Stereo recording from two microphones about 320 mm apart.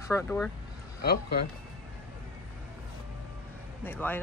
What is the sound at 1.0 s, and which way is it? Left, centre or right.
Speech, left.